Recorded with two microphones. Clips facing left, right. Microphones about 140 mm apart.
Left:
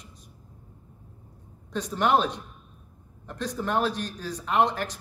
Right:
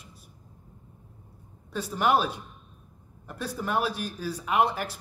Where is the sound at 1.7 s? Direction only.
5° right (ahead or behind).